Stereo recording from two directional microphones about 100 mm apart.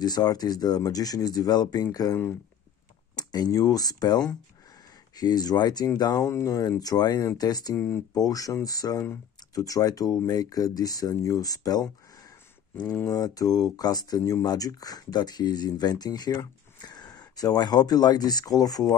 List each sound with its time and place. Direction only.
0.0 s speech: 40° left (ahead or behind)
3.2 s speech: 40° left (ahead or behind)
7.7 s speech: 25° left (ahead or behind)
8.1 s speech: 35° left (ahead or behind)
13.0 s speech: 35° left (ahead or behind)